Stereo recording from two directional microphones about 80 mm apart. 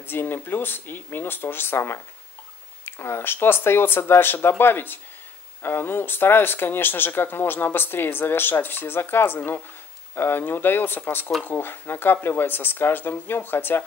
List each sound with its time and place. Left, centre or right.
0.0 s speech: left